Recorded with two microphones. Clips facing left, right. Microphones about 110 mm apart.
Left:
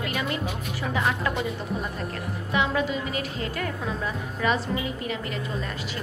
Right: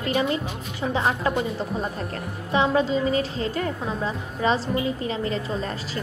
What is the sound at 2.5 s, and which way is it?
A woman's voice, 30° right (ahead or behind).